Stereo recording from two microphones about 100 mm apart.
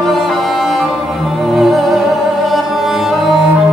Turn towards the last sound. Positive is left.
turn(degrees=0)  # may be behind; listen again after turning